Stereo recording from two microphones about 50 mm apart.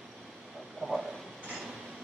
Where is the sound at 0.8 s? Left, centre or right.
Centre.